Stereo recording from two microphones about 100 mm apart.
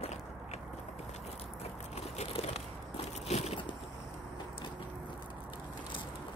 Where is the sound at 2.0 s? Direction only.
90° left.